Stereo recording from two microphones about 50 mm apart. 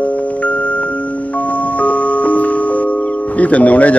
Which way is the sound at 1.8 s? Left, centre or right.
Left.